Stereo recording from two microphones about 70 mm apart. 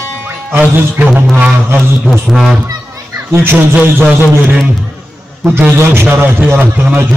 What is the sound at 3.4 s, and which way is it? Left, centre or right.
Speech, right.